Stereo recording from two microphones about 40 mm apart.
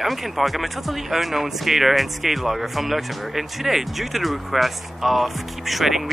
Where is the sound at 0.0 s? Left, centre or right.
Centre.